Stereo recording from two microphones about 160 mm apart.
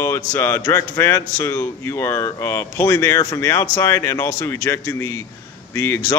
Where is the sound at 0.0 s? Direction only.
15° left (ahead or behind).